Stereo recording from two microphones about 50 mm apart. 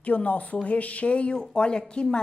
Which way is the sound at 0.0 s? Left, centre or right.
Left.